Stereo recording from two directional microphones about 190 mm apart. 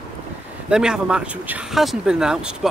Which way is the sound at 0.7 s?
5° right (ahead or behind).